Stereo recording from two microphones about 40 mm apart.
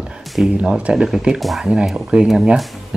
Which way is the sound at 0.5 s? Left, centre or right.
Right.